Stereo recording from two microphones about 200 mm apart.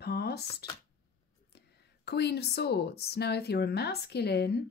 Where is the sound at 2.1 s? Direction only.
55° left (ahead or behind).